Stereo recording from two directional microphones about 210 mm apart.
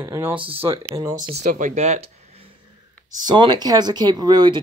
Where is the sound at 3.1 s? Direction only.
20° right (ahead or behind).